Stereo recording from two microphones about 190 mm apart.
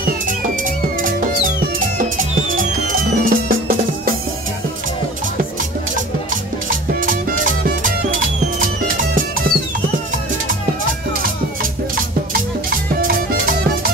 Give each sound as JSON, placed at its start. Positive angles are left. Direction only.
{"t": 2.1, "sound": "music", "side_deg": -45}
{"t": 7.6, "sound": "music", "side_deg": -45}
{"t": 12.6, "sound": "music", "side_deg": -50}